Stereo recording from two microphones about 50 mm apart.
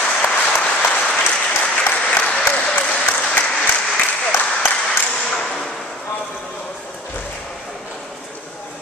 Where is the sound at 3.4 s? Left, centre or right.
Centre.